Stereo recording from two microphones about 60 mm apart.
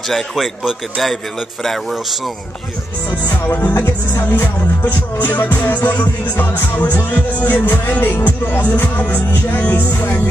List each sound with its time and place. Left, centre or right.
0.1 s a man's voice: centre
3.4 s music: left